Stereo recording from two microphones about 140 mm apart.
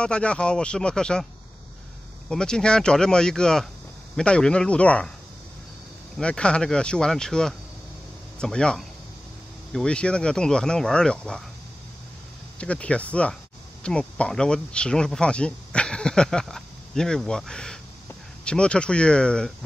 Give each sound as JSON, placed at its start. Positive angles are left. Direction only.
{"t": 0.0, "sound": "speech", "side_deg": 10}
{"t": 2.2, "sound": "speech", "side_deg": 5}
{"t": 6.1, "sound": "speech", "side_deg": 5}
{"t": 12.5, "sound": "speech", "side_deg": 10}